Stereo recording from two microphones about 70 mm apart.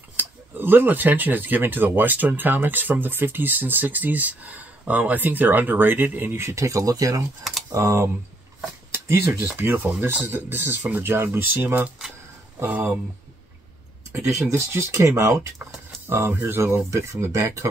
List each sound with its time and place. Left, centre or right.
0.1 s speech: right
7.7 s speech: right
14.1 s speech: right